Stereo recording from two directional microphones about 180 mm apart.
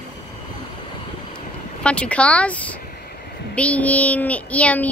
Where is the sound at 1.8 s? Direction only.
5° left (ahead or behind).